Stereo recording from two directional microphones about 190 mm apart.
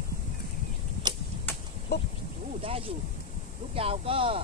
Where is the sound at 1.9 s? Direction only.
60° left (ahead or behind).